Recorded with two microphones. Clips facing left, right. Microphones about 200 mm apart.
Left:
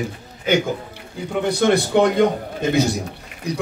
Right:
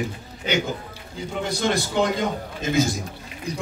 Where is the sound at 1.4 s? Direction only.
60° left (ahead or behind).